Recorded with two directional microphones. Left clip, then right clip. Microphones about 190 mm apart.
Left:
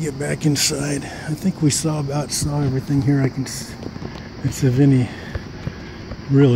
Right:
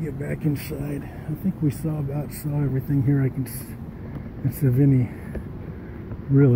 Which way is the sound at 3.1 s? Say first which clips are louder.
Left 5 dB; 15° left (ahead or behind).